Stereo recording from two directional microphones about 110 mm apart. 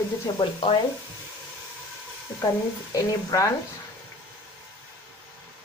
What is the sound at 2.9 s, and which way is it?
Speech, 30° left (ahead or behind).